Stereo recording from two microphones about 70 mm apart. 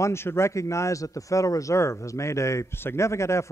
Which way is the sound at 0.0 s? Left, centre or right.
Left.